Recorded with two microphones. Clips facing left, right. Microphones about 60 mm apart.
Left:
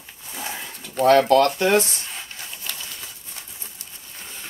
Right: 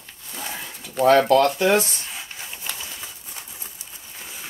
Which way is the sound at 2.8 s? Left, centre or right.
Centre.